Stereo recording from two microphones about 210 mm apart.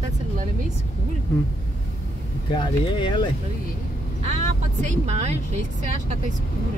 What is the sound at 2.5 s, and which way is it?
Speech, 20° left (ahead or behind).